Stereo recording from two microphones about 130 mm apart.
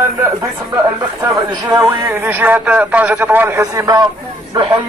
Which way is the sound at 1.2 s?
30° right (ahead or behind).